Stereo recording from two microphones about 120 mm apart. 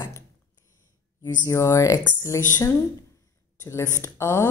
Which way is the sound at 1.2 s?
30° left (ahead or behind).